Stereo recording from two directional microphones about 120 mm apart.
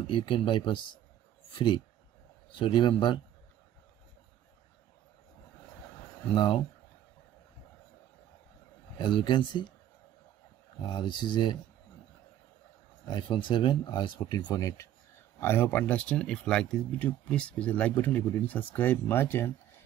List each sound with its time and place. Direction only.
0.0 s speech: 45° left (ahead or behind)
6.3 s speech: 40° left (ahead or behind)
8.9 s speech: 40° left (ahead or behind)
10.8 s speech: 40° left (ahead or behind)
13.0 s speech: 40° left (ahead or behind); by 19.5 s 20° left (ahead or behind)